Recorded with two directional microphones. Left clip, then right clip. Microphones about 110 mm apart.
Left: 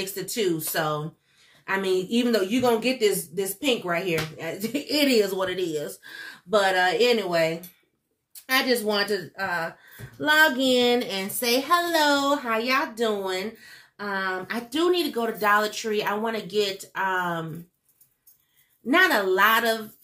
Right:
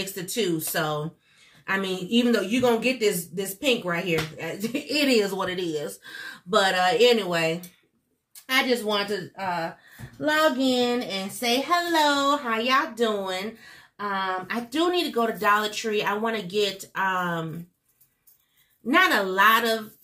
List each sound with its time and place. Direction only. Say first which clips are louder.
0.0 s a woman's voice: left 1 dB; 15° left (ahead or behind)
8.5 s speech: even; 25° left (ahead or behind)
10.2 s speech: left 2 dB; 55° left (ahead or behind)
11.4 s a woman's voice: left 1 dB; 30° left (ahead or behind); by 17.4 s 15° left (ahead or behind)
18.9 s a woman's voice: left 1 dB; 15° left (ahead or behind)